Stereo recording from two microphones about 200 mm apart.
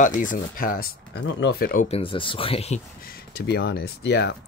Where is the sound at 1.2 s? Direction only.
55° left (ahead or behind).